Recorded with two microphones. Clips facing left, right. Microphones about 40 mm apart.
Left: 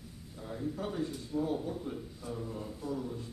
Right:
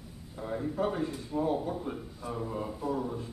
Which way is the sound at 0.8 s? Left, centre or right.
Right.